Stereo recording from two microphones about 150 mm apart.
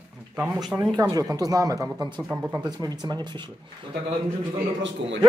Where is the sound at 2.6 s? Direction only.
25° right (ahead or behind).